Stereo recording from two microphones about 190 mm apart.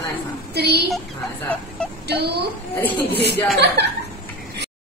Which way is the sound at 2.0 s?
60° right (ahead or behind).